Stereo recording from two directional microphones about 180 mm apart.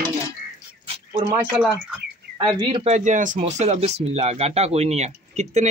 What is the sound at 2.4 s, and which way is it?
Speech, 25° right (ahead or behind).